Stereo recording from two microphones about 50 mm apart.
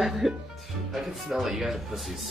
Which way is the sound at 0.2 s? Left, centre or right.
Centre.